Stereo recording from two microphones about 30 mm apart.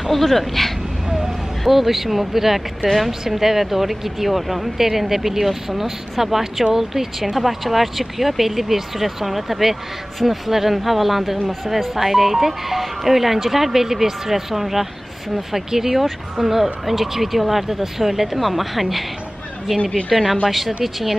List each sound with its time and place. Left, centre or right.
0.1 s speech: centre
1.0 s vehicle: right
1.7 s speech: centre
20.1 s speech: centre